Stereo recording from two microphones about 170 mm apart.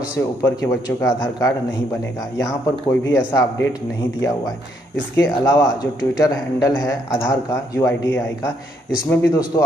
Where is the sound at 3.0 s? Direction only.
20° left (ahead or behind).